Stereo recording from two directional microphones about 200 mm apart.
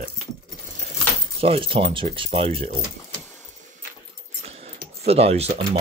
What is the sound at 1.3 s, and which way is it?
Speech, 30° right (ahead or behind).